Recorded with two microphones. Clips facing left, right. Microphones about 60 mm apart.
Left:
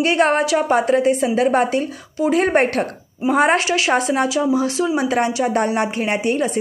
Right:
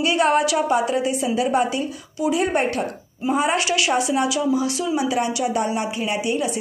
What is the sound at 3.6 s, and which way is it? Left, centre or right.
Speech, left.